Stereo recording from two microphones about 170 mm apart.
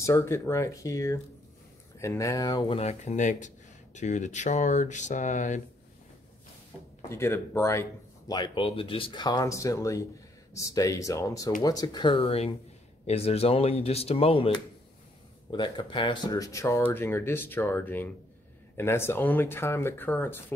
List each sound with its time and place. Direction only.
0.0 s speech: 15° left (ahead or behind)
2.8 s speech: 40° left (ahead or behind)
7.1 s speech: 15° left (ahead or behind)
8.3 s speech: 30° left (ahead or behind); by 20.5 s 10° left (ahead or behind)